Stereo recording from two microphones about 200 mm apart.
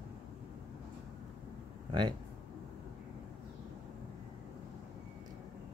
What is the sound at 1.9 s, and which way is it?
Speech, 25° right (ahead or behind).